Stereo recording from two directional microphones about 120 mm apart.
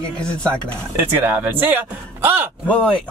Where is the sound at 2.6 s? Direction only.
10° left (ahead or behind).